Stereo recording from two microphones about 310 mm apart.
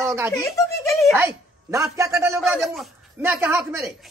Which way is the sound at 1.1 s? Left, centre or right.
Centre.